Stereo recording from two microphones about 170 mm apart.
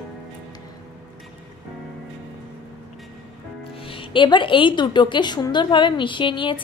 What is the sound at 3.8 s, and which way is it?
A woman's voice, 30° left (ahead or behind).